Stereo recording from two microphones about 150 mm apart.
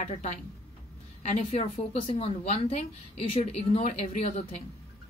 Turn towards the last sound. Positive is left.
turn(degrees=50)  # may be behind; listen again after turning